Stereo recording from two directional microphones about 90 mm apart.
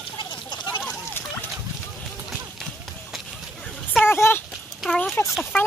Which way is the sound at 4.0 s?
25° left (ahead or behind).